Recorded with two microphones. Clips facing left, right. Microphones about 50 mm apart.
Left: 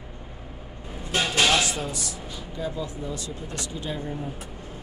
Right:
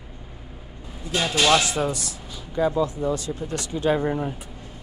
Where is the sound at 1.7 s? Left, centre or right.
Right.